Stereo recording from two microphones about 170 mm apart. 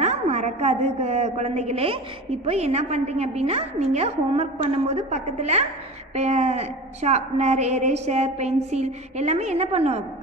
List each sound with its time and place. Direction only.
0.0 s a woman's voice: 45° right (ahead or behind)